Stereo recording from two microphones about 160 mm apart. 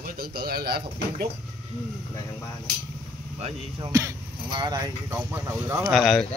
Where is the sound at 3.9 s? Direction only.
20° right (ahead or behind).